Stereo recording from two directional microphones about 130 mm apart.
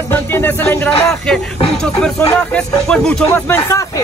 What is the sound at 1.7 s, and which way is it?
Speech, 5° left (ahead or behind).